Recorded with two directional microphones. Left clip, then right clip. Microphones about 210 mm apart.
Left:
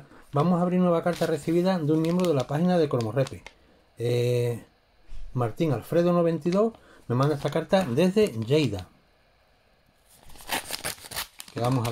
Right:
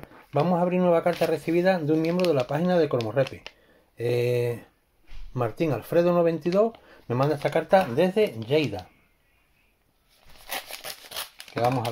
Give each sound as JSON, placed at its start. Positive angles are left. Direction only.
{"t": 0.1, "sound": "speech", "side_deg": 0}
{"t": 10.4, "sound": "a sound", "side_deg": 20}
{"t": 11.5, "sound": "speech", "side_deg": 5}